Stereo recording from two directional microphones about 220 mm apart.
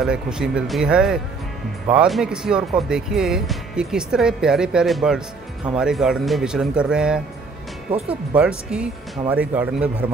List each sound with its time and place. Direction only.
0.0 s speech: 5° right (ahead or behind)
7.9 s speech: 25° right (ahead or behind)
8.4 s speech: 5° right (ahead or behind)